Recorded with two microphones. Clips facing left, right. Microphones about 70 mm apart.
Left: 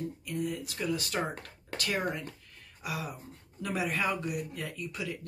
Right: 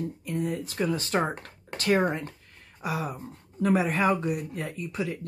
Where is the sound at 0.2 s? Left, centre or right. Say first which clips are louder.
Right 5 dB; right.